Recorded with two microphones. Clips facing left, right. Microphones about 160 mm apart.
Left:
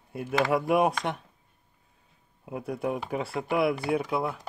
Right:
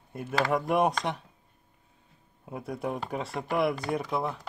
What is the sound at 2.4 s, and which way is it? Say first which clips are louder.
Speech: left 3 dB; 5° left (ahead or behind).